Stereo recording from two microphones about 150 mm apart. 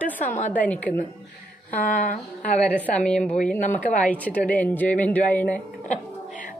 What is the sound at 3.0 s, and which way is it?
A woman's voice, 5° left (ahead or behind).